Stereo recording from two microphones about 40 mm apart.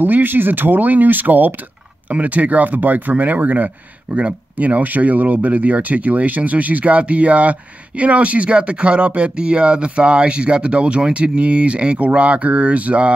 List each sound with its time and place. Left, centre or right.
0.0 s speech: right